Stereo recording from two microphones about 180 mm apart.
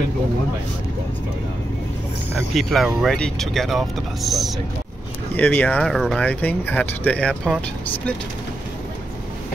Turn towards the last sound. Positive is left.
turn(degrees=5)  # may be behind; listen again after turning